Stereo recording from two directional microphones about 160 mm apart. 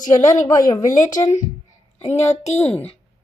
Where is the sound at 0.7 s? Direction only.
25° left (ahead or behind).